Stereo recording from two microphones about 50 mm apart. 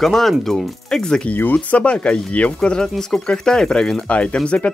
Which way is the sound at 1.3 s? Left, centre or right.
Left.